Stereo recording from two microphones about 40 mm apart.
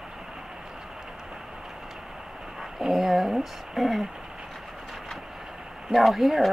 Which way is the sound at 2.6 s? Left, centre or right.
Centre.